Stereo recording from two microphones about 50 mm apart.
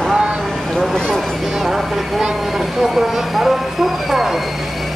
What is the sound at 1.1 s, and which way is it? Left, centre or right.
Vehicle, centre.